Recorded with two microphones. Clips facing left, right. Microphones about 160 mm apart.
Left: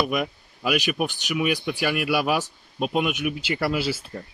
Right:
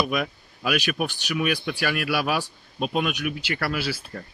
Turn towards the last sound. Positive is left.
turn(degrees=20)  # may be behind; listen again after turning